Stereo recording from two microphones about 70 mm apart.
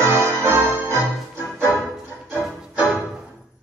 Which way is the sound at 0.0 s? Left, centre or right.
Right.